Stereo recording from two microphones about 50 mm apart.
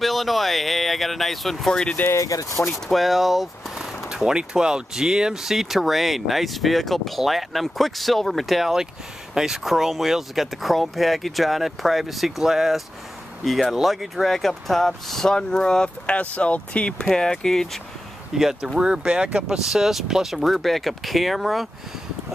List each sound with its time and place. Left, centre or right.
0.0 s speech: centre
1.7 s speech: centre
2.1 s speech: left
2.7 s speech: centre
16.1 s speech: left
17.1 s speech: centre
18.4 s speech: centre